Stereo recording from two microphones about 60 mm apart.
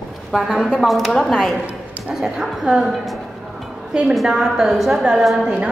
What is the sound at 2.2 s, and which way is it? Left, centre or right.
A woman's voice, centre.